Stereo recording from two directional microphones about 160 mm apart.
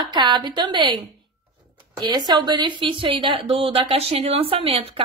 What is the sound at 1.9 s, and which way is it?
A woman's voice, 25° right (ahead or behind).